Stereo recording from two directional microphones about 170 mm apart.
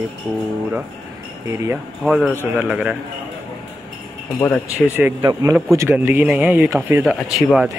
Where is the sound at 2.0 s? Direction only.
Centre (ahead or behind).